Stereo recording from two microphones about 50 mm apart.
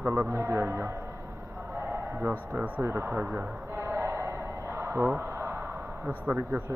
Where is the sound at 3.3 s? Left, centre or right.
Right.